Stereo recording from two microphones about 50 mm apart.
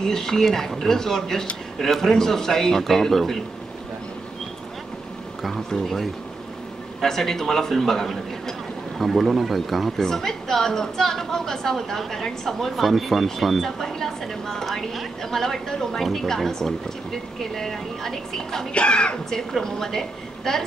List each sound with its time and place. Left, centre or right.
0.0 s a man's voice: centre
5.4 s a man's voice: centre
18.7 s speech: left
19.3 s a man's voice: centre